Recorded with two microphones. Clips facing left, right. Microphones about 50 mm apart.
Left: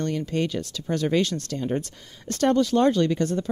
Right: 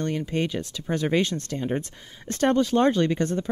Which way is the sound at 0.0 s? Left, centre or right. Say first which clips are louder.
Left 1 dB; right.